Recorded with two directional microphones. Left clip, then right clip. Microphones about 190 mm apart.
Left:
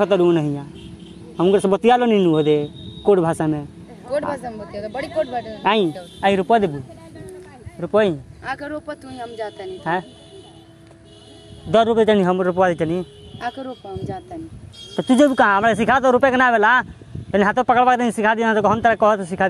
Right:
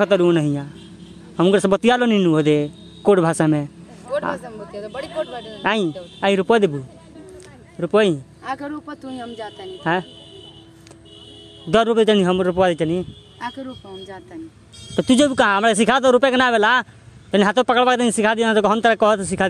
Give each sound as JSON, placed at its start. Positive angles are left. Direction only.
{"t": 0.0, "sound": "a man's voice", "side_deg": -35}
{"t": 4.7, "sound": "speech", "side_deg": -55}
{"t": 5.6, "sound": "speech", "side_deg": -20}
{"t": 6.4, "sound": "speech", "side_deg": -50}
{"t": 7.8, "sound": "a man's voice", "side_deg": -35}
{"t": 8.5, "sound": "speech", "side_deg": -55}
{"t": 11.7, "sound": "a man's voice", "side_deg": -35}
{"t": 15.0, "sound": "a man's voice", "side_deg": -40}